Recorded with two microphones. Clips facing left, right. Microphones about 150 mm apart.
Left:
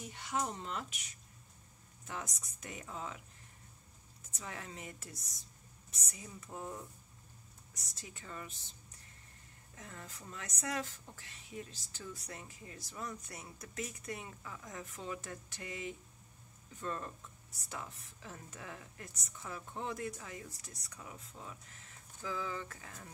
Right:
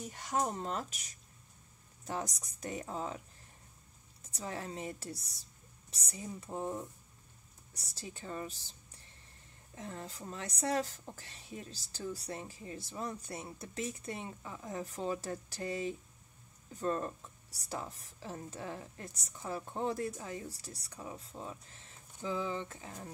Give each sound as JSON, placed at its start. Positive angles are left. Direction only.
{"t": 0.1, "sound": "speech", "side_deg": -45}
{"t": 4.3, "sound": "a woman's voice", "side_deg": -35}